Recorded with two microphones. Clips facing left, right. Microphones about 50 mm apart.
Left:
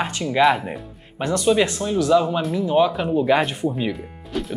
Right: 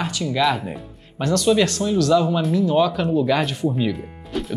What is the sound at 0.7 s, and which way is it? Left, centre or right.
Speech, left.